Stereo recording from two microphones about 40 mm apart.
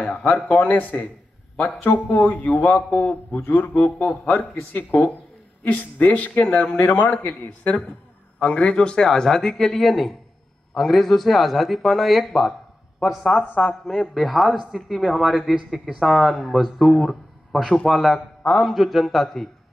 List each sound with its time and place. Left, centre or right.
0.0 s speech: left
2.1 s speech: left
2.9 s a man's voice: left
8.4 s speech: left
9.8 s speech: centre
13.4 s speech: left
13.8 s speech: centre